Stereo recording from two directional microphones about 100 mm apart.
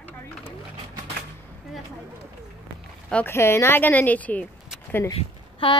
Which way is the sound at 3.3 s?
25° left (ahead or behind).